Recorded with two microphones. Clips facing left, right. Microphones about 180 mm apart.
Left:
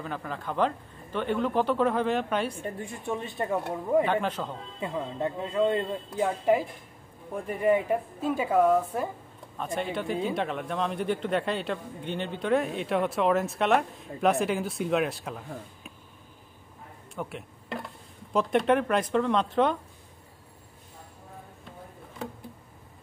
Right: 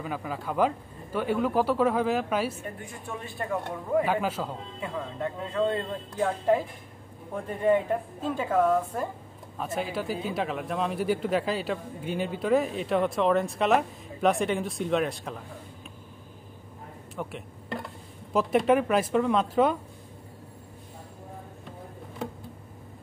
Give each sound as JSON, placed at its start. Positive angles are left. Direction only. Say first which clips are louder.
{"t": 0.0, "sound": "speech", "louder": "right 2 dB", "side_deg": -5}
{"t": 2.6, "sound": "speech", "louder": "left 4 dB", "side_deg": 30}
{"t": 4.0, "sound": "speech", "louder": "even", "side_deg": -5}
{"t": 4.7, "sound": "a woman's voice", "louder": "left 3 dB", "side_deg": 20}
{"t": 9.6, "sound": "speech", "louder": "even", "side_deg": -5}
{"t": 17.1, "sound": "speech", "louder": "even", "side_deg": 0}